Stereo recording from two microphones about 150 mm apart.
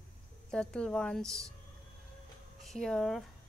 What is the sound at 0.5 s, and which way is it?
Speech, 5° left (ahead or behind).